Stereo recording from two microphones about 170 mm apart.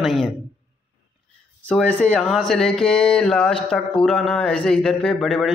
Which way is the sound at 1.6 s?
10° left (ahead or behind).